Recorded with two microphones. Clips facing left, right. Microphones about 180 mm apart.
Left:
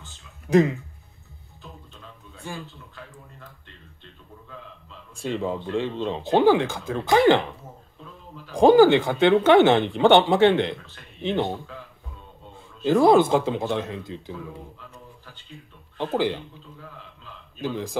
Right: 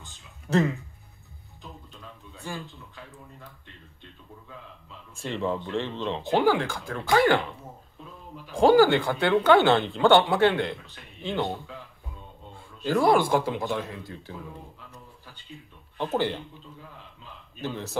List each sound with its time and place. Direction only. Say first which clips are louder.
0.5 s speech: left 5 dB; 15° left (ahead or behind)
5.1 s speech: left 2 dB; 10° left (ahead or behind)
8.5 s speech: left 4 dB; 20° left (ahead or behind)
12.8 s speech: left 5 dB; 20° left (ahead or behind)
17.6 s speech: left 4 dB; 10° left (ahead or behind)